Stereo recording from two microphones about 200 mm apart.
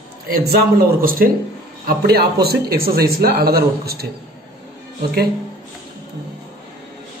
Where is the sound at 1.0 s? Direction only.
45° right (ahead or behind).